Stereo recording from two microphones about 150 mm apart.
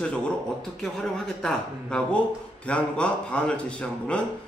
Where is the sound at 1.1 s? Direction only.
5° left (ahead or behind).